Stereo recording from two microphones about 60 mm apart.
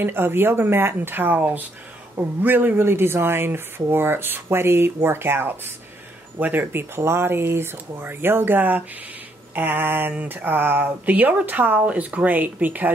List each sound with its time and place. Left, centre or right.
0.0 s speech: right